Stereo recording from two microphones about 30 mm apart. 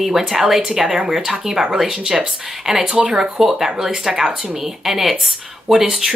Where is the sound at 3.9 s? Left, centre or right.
Right.